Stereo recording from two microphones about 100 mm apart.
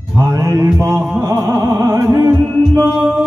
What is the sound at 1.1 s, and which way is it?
Music, 30° right (ahead or behind).